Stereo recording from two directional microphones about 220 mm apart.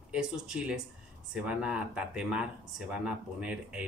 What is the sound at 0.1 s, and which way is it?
Speech, 5° right (ahead or behind).